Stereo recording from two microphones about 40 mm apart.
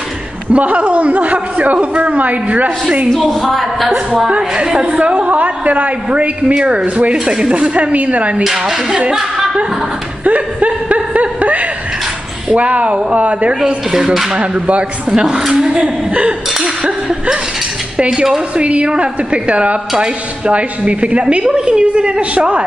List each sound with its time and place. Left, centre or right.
0.5 s a woman's voice: right
3.1 s a woman's voice: centre
4.4 s speech: centre
4.7 s a woman's voice: right
8.5 s speech: centre
9.1 s chuckle: centre
10.2 s a sound: right
12.5 s a woman's voice: right
13.9 s speech: centre
14.3 s a woman's voice: right; by 15.9 s centre
16.1 s a woman's voice: right
17.9 s cutlery: right
18.6 s a woman's voice: right